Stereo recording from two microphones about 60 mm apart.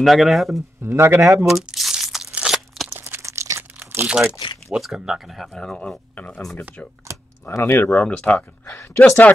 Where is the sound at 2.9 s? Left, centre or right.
Right.